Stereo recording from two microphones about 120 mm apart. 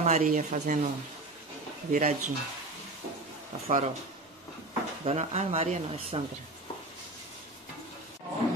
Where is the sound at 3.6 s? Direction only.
70° right (ahead or behind).